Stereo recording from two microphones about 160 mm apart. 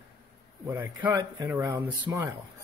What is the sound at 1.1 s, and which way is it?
Speech, 25° right (ahead or behind).